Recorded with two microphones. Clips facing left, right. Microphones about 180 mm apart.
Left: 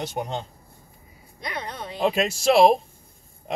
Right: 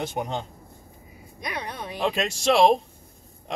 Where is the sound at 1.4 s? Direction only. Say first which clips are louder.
Even; 15° right (ahead or behind).